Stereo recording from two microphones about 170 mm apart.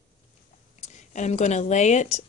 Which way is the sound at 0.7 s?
45° left (ahead or behind).